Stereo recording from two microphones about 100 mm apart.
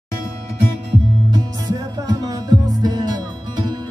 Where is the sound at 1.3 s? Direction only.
40° right (ahead or behind).